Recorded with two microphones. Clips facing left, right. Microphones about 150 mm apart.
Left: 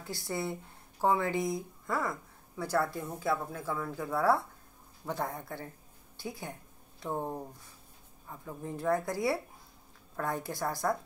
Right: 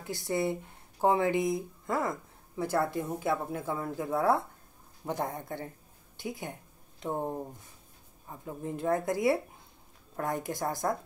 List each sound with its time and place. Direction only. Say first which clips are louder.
0.0 s a woman's voice: right 5 dB; 20° right (ahead or behind)
8.3 s speech: right 3 dB; 20° right (ahead or behind)